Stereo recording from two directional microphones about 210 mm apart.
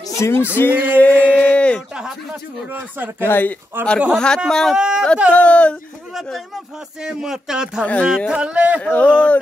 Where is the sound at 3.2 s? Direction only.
10° left (ahead or behind).